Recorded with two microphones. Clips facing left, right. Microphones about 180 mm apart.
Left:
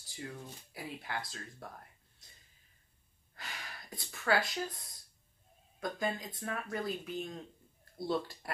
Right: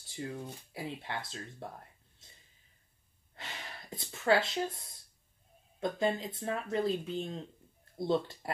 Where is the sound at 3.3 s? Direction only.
25° right (ahead or behind).